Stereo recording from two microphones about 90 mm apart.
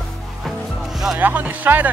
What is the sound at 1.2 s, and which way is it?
Speech, 20° right (ahead or behind).